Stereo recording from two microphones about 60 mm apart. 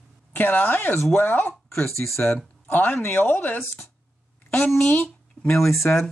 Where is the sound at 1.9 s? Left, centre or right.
Left.